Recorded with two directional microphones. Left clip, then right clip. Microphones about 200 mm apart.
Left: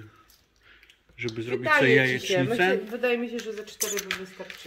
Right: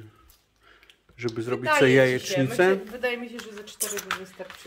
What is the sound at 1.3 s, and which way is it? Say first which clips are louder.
Speech: left 1 dB; 20° right (ahead or behind).